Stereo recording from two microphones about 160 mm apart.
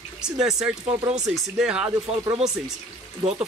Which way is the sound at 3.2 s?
40° right (ahead or behind).